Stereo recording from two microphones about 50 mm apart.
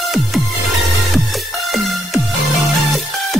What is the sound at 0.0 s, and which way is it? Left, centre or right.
Music, centre.